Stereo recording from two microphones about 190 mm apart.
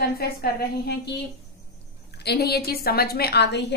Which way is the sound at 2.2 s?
60° left (ahead or behind).